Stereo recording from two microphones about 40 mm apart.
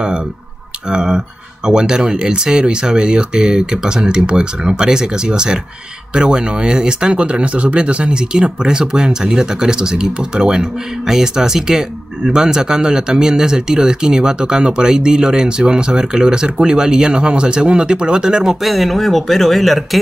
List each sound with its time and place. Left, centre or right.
0.8 s speech: right
18.6 s speech: centre